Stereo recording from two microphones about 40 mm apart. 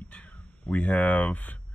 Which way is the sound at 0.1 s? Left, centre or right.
Left.